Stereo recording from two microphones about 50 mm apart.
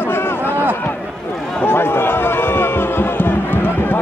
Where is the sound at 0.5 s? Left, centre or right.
Right.